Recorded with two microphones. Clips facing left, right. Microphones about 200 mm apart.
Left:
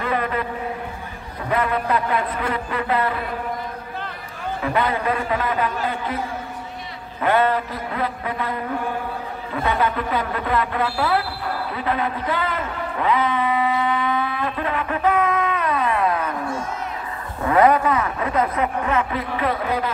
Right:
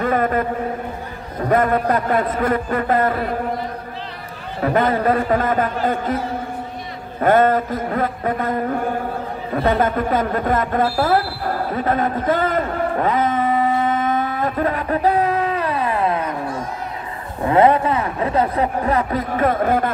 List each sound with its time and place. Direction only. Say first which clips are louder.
0.0 s a man's voice: right 5 dB; 45° right (ahead or behind)
4.6 s a man's voice: right 5 dB; 45° right (ahead or behind)
9.5 s a sound: right 4 dB; 45° right (ahead or behind); by 16.3 s 30° right (ahead or behind)
17.4 s a man's voice: right 2 dB; 25° right (ahead or behind); by 19.9 s 50° right (ahead or behind)